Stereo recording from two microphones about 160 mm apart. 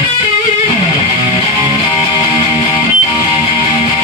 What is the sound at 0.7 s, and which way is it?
Music, 40° left (ahead or behind).